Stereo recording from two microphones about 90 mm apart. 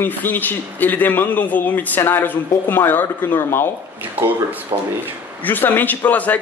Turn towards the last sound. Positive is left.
turn(degrees=15)  # may be behind; listen again after turning